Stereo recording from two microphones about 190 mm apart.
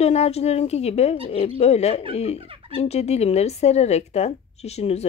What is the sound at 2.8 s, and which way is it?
Speech, 35° left (ahead or behind).